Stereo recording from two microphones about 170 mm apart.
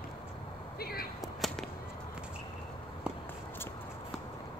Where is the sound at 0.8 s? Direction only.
65° left (ahead or behind).